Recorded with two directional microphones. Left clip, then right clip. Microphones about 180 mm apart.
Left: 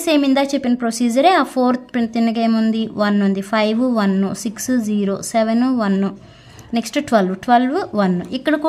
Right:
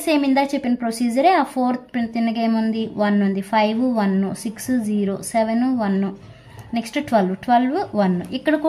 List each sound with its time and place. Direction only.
0.0 s a woman's voice: 30° left (ahead or behind)